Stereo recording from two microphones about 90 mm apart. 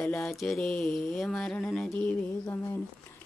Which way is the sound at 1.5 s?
10° left (ahead or behind).